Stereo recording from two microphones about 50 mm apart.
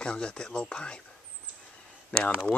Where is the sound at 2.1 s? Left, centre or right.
Left.